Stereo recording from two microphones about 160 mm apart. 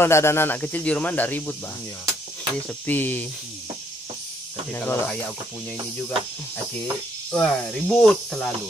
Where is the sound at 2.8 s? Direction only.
10° left (ahead or behind).